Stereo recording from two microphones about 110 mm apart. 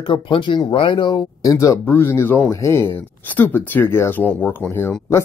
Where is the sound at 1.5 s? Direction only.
30° left (ahead or behind).